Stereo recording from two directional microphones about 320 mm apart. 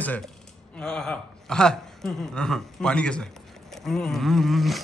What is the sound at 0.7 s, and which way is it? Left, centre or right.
Speech, centre.